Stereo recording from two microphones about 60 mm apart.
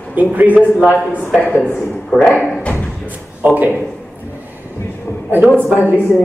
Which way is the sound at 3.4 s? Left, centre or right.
Right.